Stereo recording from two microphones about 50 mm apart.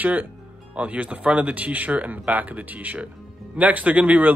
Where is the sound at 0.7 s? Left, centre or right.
Right.